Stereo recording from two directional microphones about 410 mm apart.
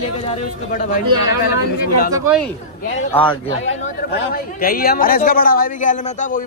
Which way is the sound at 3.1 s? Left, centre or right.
Centre.